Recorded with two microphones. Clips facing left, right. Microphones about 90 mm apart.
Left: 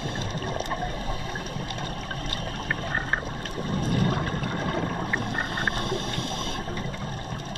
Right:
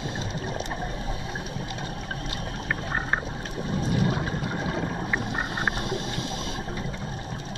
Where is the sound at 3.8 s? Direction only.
15° right (ahead or behind).